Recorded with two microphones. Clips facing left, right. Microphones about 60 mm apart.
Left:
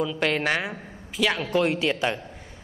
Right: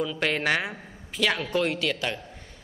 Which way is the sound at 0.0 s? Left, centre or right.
Centre.